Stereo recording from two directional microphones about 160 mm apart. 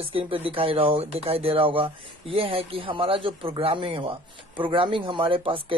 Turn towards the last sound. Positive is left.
turn(degrees=-35)  # may be behind; listen again after turning